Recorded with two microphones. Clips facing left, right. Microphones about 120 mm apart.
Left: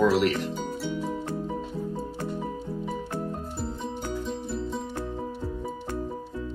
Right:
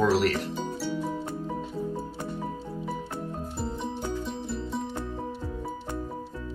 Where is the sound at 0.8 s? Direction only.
Centre (ahead or behind).